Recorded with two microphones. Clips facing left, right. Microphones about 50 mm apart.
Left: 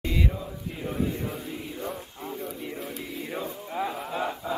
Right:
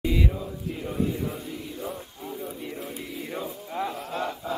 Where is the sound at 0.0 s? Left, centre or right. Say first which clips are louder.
Right 2 dB; centre.